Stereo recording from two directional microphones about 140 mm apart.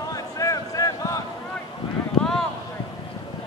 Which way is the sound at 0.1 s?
25° left (ahead or behind).